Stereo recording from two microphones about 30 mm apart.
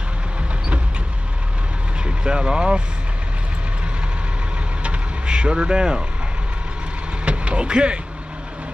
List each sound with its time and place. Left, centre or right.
2.0 s speech: right
5.3 s speech: right
7.2 s speech: right